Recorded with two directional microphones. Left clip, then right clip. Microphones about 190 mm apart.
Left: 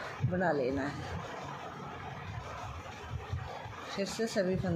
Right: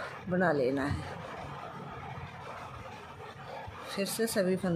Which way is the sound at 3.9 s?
20° right (ahead or behind).